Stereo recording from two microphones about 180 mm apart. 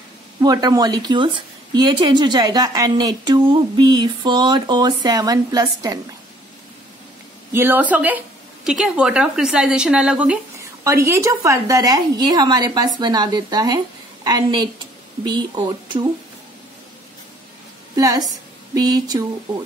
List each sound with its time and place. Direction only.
0.4 s a woman's voice: 20° right (ahead or behind)
7.5 s a woman's voice: 10° right (ahead or behind)
17.9 s a woman's voice: 20° right (ahead or behind)